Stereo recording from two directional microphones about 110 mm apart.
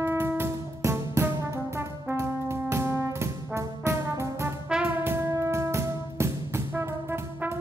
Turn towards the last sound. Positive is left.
turn(degrees=-20)  # may be behind; listen again after turning